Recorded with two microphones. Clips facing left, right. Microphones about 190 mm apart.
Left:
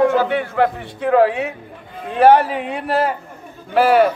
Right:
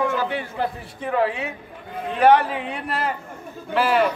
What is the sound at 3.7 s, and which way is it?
Speech, 45° left (ahead or behind).